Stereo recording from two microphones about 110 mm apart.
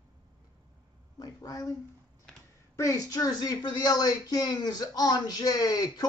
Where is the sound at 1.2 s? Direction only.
35° left (ahead or behind).